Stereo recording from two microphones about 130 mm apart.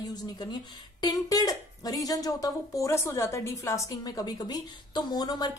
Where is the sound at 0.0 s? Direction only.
30° left (ahead or behind).